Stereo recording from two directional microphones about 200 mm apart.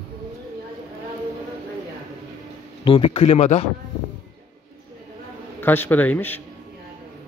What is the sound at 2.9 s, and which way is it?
Speech, 30° left (ahead or behind).